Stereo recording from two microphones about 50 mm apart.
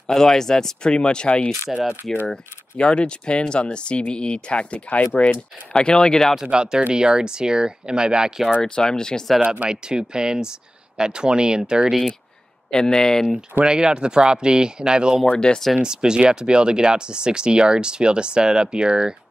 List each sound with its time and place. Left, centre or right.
0.0 s speech: centre; by 5.3 s left
5.7 s speech: centre
6.5 s speech: centre
8.5 s speech: centre
9.7 s speech: centre
12.7 s speech: centre
13.7 s speech: centre
15.3 s speech: centre
15.8 s speech: centre